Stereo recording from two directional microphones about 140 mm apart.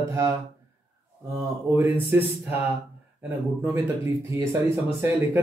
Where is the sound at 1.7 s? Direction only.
15° right (ahead or behind).